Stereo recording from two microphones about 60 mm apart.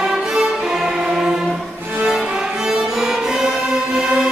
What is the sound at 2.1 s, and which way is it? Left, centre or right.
Violin, centre.